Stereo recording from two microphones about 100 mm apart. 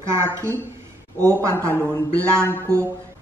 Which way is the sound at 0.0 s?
30° right (ahead or behind).